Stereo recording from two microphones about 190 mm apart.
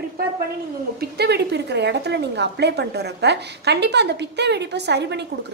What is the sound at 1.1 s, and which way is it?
A woman's voice, 60° right (ahead or behind).